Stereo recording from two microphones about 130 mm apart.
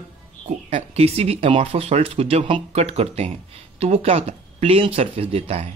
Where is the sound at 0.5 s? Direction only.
60° right (ahead or behind).